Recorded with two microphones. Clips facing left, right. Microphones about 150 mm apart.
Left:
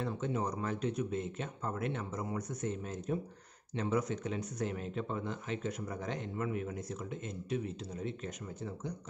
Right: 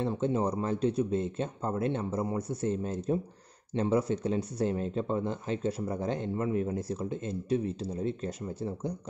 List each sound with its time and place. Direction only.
0.0 s speech: 30° right (ahead or behind)